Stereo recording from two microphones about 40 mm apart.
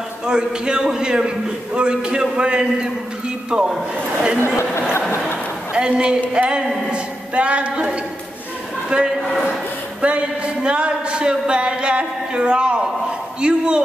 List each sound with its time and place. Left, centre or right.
0.3 s a man's voice: right
5.7 s a woman's voice: right
8.9 s a man's voice: right